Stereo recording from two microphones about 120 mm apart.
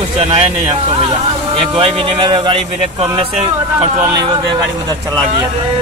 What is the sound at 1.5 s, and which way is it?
Speech, 50° right (ahead or behind).